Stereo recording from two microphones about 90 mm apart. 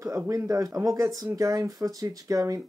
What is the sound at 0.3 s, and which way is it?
Speech, 35° right (ahead or behind).